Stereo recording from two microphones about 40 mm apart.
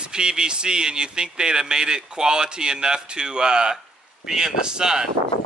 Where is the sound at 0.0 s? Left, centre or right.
Right.